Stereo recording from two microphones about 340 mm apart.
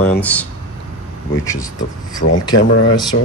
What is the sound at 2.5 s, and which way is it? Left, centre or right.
Speech, left.